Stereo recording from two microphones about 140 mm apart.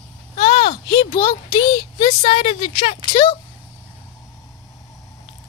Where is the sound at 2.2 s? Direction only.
45° left (ahead or behind).